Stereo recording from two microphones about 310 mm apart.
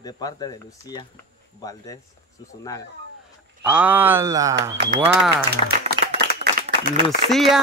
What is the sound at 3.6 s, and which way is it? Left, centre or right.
Speech, centre.